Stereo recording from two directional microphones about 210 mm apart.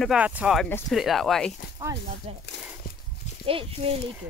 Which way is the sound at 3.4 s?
25° right (ahead or behind).